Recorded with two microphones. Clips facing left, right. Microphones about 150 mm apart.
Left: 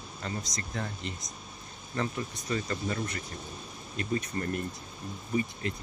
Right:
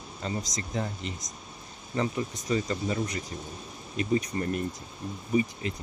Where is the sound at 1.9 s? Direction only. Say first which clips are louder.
Right 4 dB; 15° right (ahead or behind).